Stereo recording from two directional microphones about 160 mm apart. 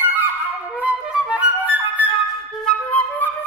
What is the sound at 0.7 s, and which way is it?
Flute, 10° right (ahead or behind).